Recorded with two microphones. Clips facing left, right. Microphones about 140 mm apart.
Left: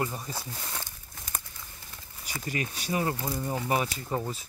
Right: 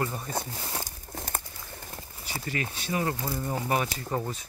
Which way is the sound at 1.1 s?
55° right (ahead or behind).